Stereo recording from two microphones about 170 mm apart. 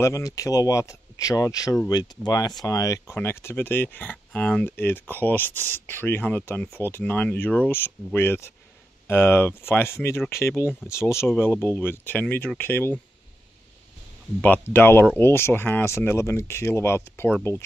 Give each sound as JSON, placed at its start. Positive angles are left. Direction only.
{"t": 0.0, "sound": "speech", "side_deg": 20}
{"t": 14.4, "sound": "speech", "side_deg": 10}